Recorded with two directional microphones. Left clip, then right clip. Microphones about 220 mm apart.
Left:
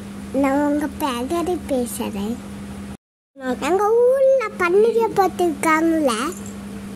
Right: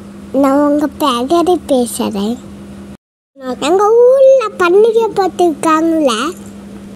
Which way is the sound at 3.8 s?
15° right (ahead or behind).